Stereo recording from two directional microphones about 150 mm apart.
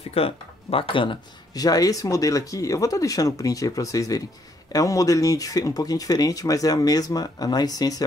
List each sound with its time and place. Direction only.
0.1 s speech: 40° left (ahead or behind)